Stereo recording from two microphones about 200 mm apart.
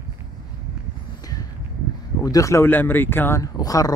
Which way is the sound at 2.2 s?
15° left (ahead or behind).